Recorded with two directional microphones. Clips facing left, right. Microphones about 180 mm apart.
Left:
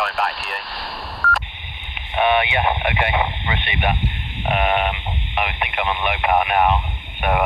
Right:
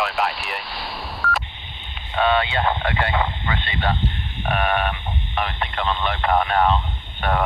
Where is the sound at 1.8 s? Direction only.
15° left (ahead or behind).